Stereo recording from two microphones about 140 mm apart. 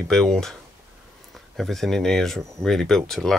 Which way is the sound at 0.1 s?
5° left (ahead or behind).